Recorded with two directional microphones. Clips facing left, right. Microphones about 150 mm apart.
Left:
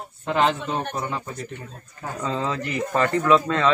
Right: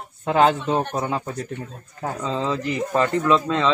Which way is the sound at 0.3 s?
40° right (ahead or behind).